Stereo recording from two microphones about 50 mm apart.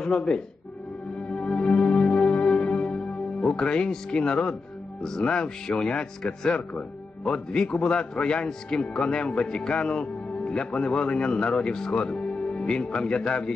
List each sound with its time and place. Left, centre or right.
0.0 s speech: centre
1.3 s music: centre
5.0 s a man's voice: centre